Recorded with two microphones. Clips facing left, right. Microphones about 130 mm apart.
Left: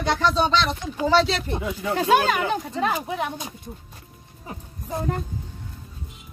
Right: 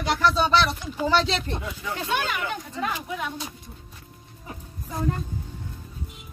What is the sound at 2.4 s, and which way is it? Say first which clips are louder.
Speech: left 6 dB; 35° left (ahead or behind).